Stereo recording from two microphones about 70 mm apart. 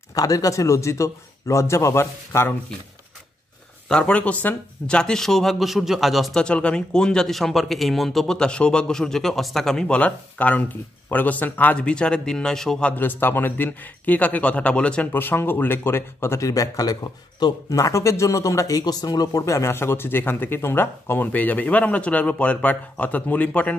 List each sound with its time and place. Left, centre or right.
0.1 s a man's voice: left
3.9 s a man's voice: centre
6.3 s speech: centre
12.9 s speech: left
15.1 s speech: left
17.6 s a man's voice: left
19.7 s speech: left